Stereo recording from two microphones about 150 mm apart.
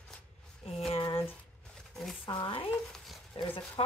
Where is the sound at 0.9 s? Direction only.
40° left (ahead or behind).